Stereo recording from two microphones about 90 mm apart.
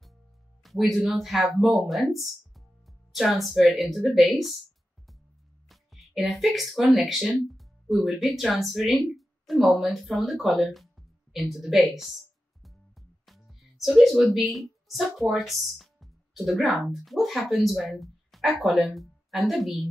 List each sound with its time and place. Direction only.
0.7 s speech: centre (ahead or behind)
5.7 s speech: centre (ahead or behind)
13.2 s speech: centre (ahead or behind)